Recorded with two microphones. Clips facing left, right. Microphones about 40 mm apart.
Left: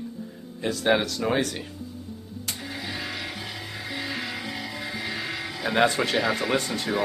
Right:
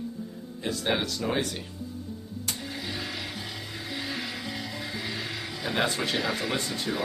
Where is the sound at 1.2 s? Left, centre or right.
Left.